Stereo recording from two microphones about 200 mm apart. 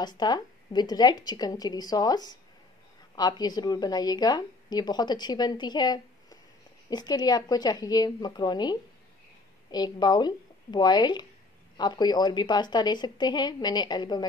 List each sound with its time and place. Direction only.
0.0 s a woman's voice: 20° left (ahead or behind)